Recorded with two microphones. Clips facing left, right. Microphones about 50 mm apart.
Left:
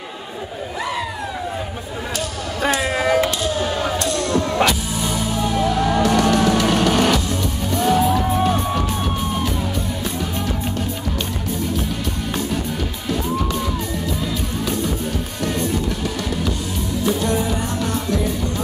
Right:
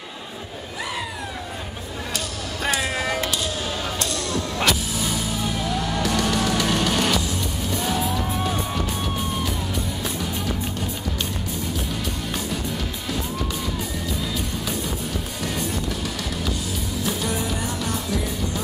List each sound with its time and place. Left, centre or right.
2.6 s a sound: centre
4.6 s music: centre
14.2 s music: centre